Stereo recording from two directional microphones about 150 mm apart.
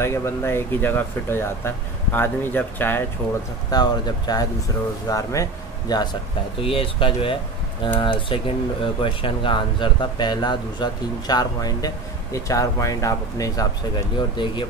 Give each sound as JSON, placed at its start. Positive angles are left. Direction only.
{"t": 0.0, "sound": "speech", "side_deg": 15}
{"t": 3.7, "sound": "speech", "side_deg": 25}
{"t": 6.6, "sound": "speech", "side_deg": 35}